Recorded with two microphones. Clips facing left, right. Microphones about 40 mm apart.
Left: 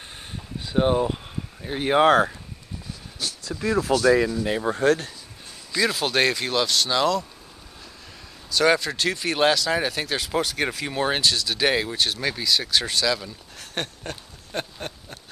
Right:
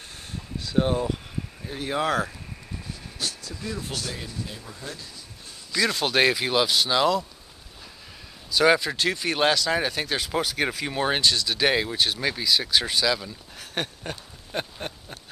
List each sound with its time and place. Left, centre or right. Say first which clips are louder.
0.6 s a sound: left 3 dB; left
1.7 s speech: left 8 dB; left
3.4 s speech: left 10 dB; left
4.3 s speech: left 13 dB; left
5.7 s speech: left 1 dB; centre
8.5 s speech: even; centre